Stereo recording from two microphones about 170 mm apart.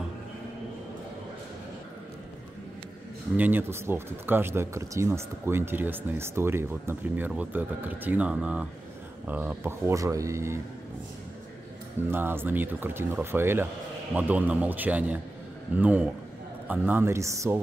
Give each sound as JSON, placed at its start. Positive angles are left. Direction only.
{"t": 3.3, "sound": "speech", "side_deg": -10}
{"t": 12.1, "sound": "speech", "side_deg": -15}